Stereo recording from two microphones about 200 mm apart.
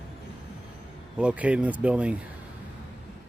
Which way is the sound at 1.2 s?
5° right (ahead or behind).